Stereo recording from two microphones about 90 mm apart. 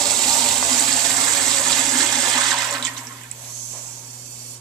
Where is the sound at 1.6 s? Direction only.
Centre (ahead or behind).